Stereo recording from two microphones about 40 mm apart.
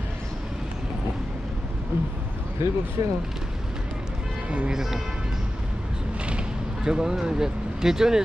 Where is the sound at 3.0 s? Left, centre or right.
Right.